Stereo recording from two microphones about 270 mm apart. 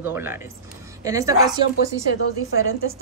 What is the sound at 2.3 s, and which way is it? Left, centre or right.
Speech, right.